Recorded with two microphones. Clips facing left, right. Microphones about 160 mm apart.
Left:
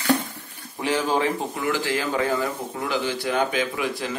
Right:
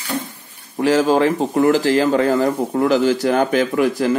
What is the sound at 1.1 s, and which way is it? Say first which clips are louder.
Speech: right 8 dB; 40° right (ahead or behind).